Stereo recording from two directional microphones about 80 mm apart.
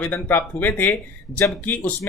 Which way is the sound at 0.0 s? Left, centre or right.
Left.